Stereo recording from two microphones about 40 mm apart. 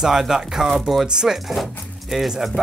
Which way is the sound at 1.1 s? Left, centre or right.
Centre.